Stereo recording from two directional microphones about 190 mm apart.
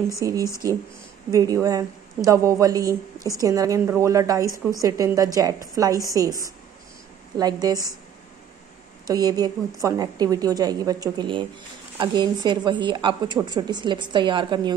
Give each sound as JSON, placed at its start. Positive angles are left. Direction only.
{"t": 0.1, "sound": "a woman's voice", "side_deg": -20}
{"t": 7.6, "sound": "a woman's voice", "side_deg": -20}
{"t": 9.0, "sound": "a woman's voice", "side_deg": -20}